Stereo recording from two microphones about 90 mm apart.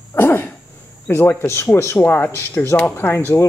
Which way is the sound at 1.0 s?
25° left (ahead or behind).